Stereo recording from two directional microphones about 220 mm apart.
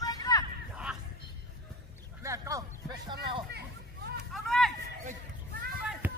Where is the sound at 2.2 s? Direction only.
15° right (ahead or behind).